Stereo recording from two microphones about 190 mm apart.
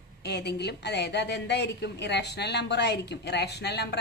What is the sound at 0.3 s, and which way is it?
A woman's voice, 60° left (ahead or behind).